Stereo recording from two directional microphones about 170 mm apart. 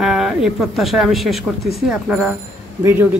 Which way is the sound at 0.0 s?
Centre (ahead or behind).